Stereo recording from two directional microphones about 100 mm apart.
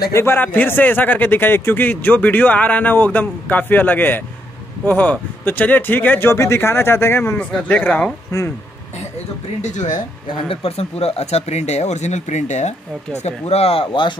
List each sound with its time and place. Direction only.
0.1 s a man's voice: 25° left (ahead or behind)
10.5 s speech: 80° left
13.2 s a man's voice: 90° left; by 14.1 s 60° left (ahead or behind)